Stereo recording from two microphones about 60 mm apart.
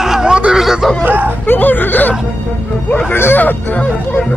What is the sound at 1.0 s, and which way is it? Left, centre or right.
Speech, right.